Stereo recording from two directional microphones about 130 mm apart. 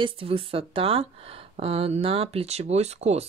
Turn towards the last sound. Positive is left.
turn(degrees=-55)  # may be behind; listen again after turning